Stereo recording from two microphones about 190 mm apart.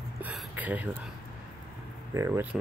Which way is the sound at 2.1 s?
15° right (ahead or behind).